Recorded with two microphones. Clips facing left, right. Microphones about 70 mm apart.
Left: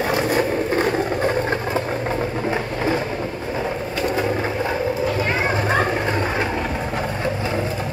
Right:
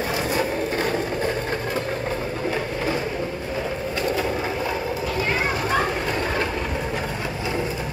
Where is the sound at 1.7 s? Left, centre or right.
Left.